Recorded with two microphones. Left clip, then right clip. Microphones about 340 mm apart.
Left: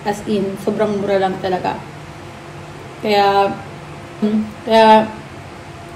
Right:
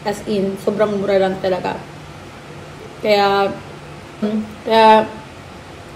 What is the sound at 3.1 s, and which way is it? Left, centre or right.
Speech, centre.